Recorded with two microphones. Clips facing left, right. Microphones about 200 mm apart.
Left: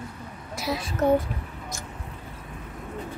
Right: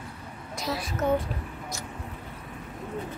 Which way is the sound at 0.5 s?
5° left (ahead or behind).